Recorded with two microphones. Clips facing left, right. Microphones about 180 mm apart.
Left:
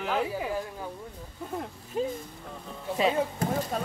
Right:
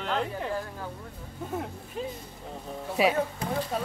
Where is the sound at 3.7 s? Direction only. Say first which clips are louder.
Even; centre (ahead or behind).